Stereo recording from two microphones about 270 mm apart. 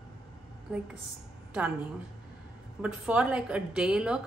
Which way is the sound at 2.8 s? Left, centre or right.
Centre.